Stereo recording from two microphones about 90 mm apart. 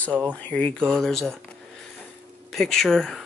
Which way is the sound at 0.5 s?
15° left (ahead or behind).